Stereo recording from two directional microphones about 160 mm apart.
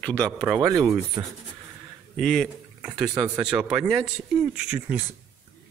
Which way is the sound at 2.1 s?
Centre (ahead or behind).